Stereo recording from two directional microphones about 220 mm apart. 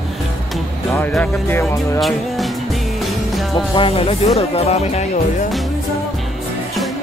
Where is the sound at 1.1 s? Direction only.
10° left (ahead or behind).